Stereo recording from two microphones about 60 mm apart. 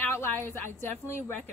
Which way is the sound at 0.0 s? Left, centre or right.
Left.